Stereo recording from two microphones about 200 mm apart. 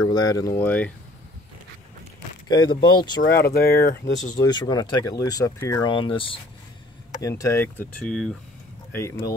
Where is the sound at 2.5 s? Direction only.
20° left (ahead or behind).